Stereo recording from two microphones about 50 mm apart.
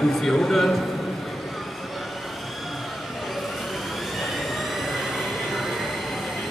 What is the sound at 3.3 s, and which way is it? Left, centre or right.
Vehicle, centre.